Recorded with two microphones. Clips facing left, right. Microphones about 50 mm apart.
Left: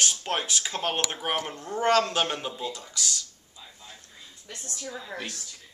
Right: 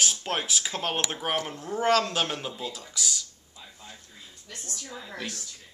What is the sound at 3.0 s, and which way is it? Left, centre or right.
Speech, centre.